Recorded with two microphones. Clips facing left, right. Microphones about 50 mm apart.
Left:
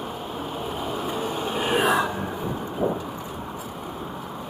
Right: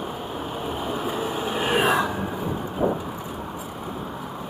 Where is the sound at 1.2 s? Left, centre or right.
Right.